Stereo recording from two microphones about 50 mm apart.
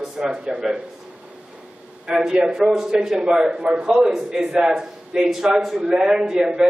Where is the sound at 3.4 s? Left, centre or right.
Right.